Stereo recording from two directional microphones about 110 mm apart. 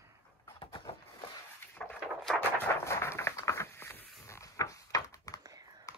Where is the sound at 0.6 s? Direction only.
55° left (ahead or behind).